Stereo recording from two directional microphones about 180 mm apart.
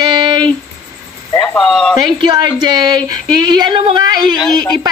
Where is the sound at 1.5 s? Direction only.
Centre (ahead or behind).